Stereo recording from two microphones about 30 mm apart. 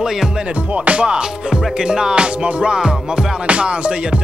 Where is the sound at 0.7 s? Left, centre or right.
Right.